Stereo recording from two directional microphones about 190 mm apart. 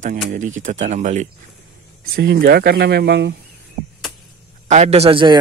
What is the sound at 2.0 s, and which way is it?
Speech, 55° right (ahead or behind).